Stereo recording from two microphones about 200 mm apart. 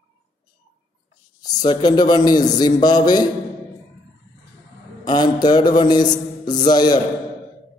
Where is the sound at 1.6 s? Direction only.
20° left (ahead or behind).